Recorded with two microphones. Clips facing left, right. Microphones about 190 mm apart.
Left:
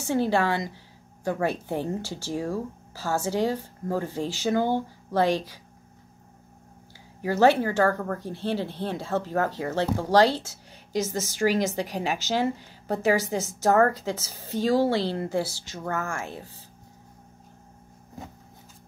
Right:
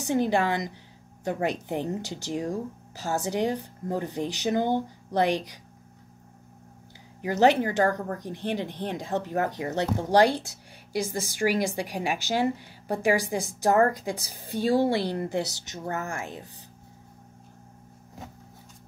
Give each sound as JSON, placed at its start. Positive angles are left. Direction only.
{"t": 0.0, "sound": "speech", "side_deg": -15}
{"t": 7.2, "sound": "speech", "side_deg": -15}
{"t": 14.6, "sound": "a woman's voice", "side_deg": 40}
{"t": 14.9, "sound": "a woman's voice", "side_deg": -15}